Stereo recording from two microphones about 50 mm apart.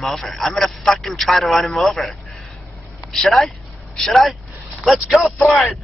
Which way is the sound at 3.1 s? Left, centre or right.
Centre.